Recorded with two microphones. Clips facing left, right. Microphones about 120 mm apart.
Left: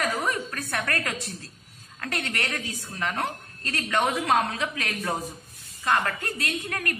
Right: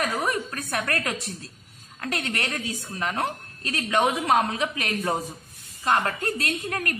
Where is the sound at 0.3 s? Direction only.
20° right (ahead or behind).